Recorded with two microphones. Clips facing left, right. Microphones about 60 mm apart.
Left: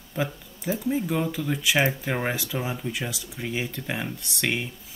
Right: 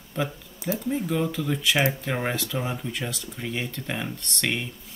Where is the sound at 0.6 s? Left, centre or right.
Centre.